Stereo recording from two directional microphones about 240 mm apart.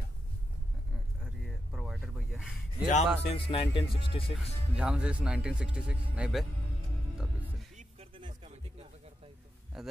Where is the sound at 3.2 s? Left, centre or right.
Left.